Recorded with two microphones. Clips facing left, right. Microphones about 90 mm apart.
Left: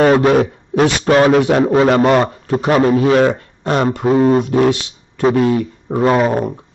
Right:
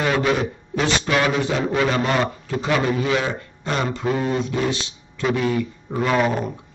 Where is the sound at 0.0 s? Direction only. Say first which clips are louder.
Left 9 dB; 45° left (ahead or behind).